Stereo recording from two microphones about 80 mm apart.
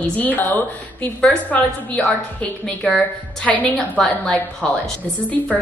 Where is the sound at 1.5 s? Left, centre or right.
Centre.